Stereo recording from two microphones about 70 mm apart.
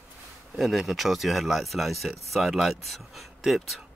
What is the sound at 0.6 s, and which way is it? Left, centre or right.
Speech, centre.